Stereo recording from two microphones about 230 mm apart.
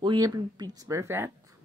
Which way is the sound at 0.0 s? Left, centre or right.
Centre.